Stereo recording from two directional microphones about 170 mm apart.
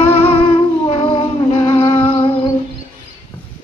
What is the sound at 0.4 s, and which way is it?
Humming, 30° left (ahead or behind).